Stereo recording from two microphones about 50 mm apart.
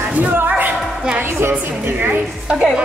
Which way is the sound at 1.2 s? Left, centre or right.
Right.